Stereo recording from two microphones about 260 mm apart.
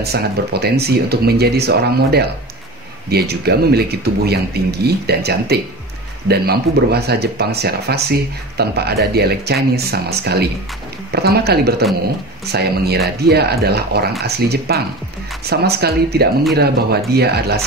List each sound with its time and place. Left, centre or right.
0.0 s speech: right